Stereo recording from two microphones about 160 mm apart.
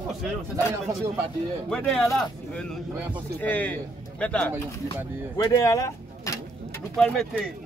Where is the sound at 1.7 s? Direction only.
Centre (ahead or behind).